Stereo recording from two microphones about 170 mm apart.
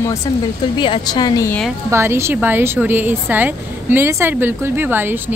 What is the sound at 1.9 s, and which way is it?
A woman's voice, 15° right (ahead or behind).